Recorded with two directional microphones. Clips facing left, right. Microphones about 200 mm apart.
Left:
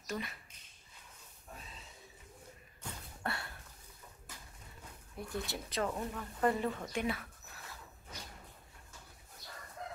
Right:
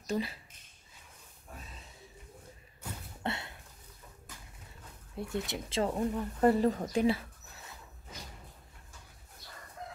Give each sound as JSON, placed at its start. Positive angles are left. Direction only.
{"t": 0.0, "sound": "speech", "side_deg": -30}
{"t": 3.2, "sound": "a sound", "side_deg": -20}
{"t": 5.1, "sound": "speech", "side_deg": -25}